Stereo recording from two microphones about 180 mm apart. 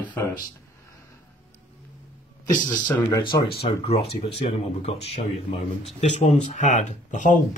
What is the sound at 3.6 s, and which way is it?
Speech, 35° left (ahead or behind).